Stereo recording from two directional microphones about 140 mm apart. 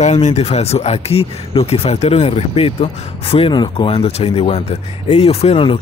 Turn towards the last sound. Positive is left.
turn(degrees=40)  # may be behind; listen again after turning